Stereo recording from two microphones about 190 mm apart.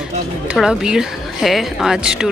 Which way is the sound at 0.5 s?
5° right (ahead or behind).